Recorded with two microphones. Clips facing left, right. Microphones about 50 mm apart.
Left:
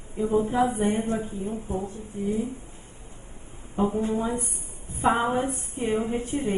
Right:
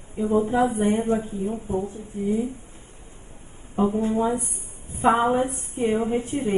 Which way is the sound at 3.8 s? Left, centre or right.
Centre.